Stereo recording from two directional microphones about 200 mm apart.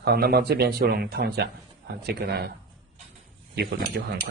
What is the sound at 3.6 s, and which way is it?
Speech, 55° right (ahead or behind).